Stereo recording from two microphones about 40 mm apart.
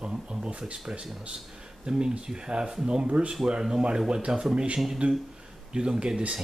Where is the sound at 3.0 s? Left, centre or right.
Right.